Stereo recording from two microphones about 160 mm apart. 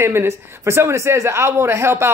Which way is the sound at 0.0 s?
15° right (ahead or behind).